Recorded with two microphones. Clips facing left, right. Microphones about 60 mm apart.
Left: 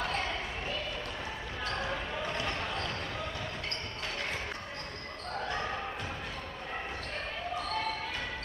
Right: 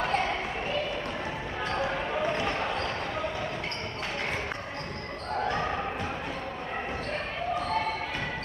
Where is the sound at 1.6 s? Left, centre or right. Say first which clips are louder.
Right 5 dB; right.